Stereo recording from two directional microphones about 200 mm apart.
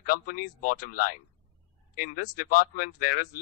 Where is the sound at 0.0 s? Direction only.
45° left (ahead or behind).